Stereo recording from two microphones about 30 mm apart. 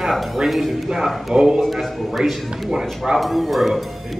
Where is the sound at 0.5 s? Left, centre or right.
Centre.